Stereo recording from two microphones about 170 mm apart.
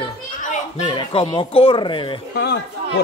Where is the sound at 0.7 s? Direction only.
30° left (ahead or behind).